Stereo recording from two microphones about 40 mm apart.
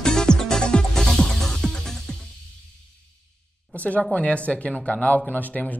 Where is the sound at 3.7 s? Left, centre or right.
Left.